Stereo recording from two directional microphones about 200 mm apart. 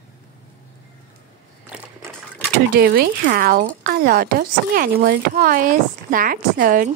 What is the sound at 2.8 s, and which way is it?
Speech, 50° right (ahead or behind).